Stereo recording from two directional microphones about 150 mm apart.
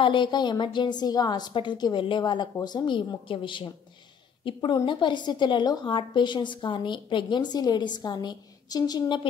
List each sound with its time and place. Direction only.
0.0 s a woman's voice: 30° left (ahead or behind)